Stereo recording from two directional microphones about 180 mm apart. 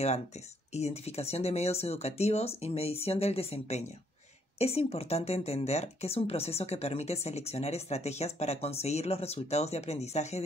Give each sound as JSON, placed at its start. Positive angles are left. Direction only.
{"t": 0.7, "sound": "speech", "side_deg": 35}